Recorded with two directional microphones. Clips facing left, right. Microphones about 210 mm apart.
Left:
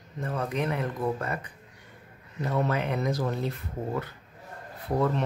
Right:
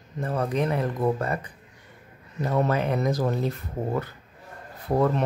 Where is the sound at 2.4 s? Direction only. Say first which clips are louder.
Right 4 dB; 40° right (ahead or behind).